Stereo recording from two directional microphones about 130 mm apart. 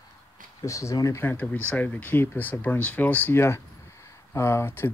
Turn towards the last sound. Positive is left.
turn(degrees=20)  # may be behind; listen again after turning